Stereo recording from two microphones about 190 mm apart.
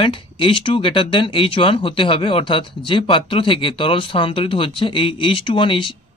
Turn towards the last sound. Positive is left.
turn(degrees=25)  # may be behind; listen again after turning